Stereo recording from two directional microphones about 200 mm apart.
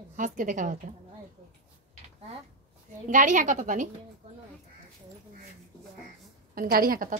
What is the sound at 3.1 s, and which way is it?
Speech, 40° right (ahead or behind).